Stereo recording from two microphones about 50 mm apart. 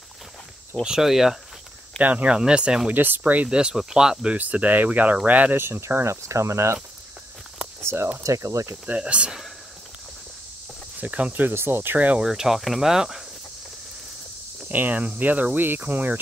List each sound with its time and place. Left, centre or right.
0.8 s speech: centre
2.0 s speech: right
2.3 s speech: centre
2.9 s speech: right
3.4 s speech: centre
4.4 s speech: right
5.6 s cricket: right
7.8 s speech: right
8.2 s speech: right
8.8 s speech: right
11.0 s speech: right
11.5 s speech: right
12.2 s speech: centre
14.7 s speech: right